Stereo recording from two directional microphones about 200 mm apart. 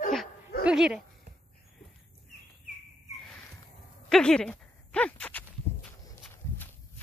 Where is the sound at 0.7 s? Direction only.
5° right (ahead or behind).